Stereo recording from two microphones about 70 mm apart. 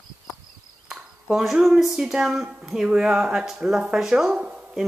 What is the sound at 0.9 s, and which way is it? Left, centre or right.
Cricket, centre.